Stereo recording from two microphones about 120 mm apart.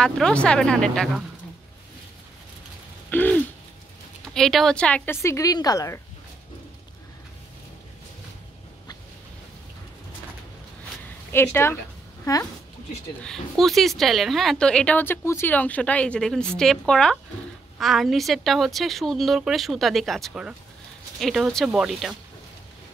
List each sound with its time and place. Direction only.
0.0 s speech: 10° left (ahead or behind)
3.1 s a sound: 15° left (ahead or behind)
4.3 s speech: 5° left (ahead or behind); by 5.9 s 30° left (ahead or behind)
11.3 s speech: 20° left (ahead or behind)
12.3 s speech: 30° left (ahead or behind)
13.2 s a woman's voice: centre (ahead or behind)